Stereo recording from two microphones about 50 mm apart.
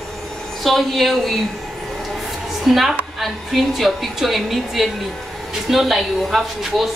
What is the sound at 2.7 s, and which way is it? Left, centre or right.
A woman's voice, centre.